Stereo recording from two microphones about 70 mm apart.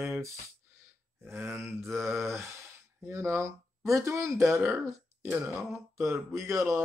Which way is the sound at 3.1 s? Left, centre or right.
Right.